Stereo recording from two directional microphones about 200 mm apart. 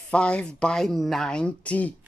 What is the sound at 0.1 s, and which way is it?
Speech, 5° left (ahead or behind).